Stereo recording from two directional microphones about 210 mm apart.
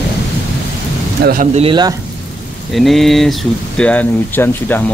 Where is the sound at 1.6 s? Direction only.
25° right (ahead or behind).